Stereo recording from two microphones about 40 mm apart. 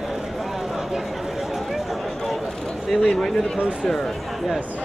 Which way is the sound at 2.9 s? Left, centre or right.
Centre.